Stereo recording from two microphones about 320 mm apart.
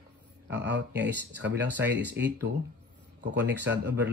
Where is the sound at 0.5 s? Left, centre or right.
Right.